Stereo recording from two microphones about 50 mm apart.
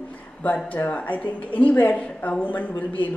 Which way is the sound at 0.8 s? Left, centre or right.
Left.